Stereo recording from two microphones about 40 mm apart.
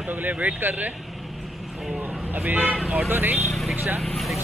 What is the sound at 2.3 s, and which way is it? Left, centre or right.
Speech, right.